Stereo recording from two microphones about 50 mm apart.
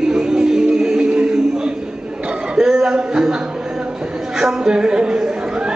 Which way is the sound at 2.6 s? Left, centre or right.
Centre.